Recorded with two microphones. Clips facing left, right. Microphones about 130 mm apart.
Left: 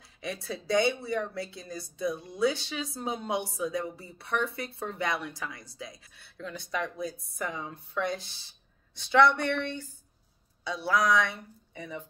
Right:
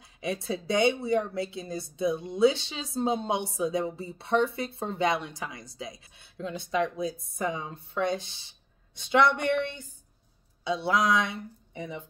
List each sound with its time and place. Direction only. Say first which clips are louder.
0.2 s a woman's voice: right 5 dB; 25° right (ahead or behind)